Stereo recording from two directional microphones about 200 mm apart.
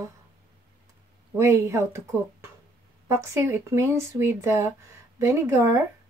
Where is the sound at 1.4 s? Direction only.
15° right (ahead or behind).